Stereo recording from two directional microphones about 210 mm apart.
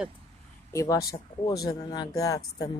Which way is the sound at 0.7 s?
15° left (ahead or behind).